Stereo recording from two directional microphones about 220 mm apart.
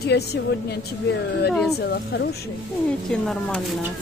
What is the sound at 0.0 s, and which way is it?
Speech, 50° left (ahead or behind).